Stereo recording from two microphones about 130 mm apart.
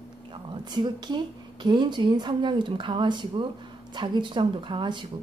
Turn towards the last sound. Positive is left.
turn(degrees=-40)  # may be behind; listen again after turning